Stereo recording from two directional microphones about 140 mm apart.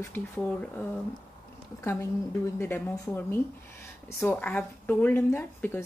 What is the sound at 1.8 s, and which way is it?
A woman's voice, 20° left (ahead or behind).